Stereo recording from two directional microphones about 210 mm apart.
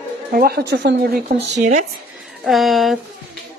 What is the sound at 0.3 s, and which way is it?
Speech, 45° right (ahead or behind).